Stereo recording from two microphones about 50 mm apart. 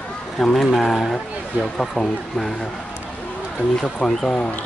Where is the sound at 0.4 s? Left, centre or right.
Centre.